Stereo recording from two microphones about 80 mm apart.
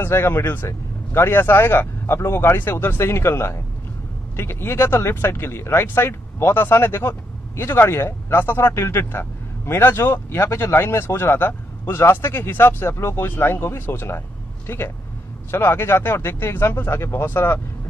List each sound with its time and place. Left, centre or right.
0.0 s speech: left